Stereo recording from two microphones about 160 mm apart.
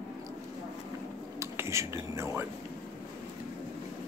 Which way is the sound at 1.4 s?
20° right (ahead or behind).